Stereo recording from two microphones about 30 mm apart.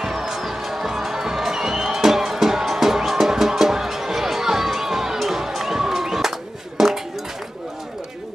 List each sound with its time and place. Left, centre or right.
0.0 s music: centre
4.7 s crowd: centre
6.8 s a sound: centre